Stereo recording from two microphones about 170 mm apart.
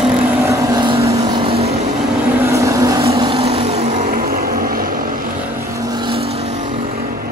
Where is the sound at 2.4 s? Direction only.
15° right (ahead or behind).